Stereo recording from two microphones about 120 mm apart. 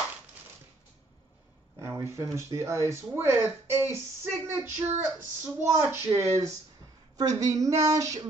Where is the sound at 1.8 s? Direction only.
20° right (ahead or behind).